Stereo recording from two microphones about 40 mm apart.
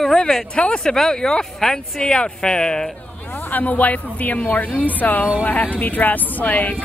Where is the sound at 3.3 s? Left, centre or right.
Left.